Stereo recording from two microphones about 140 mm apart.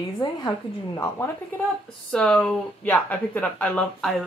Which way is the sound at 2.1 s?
5° left (ahead or behind).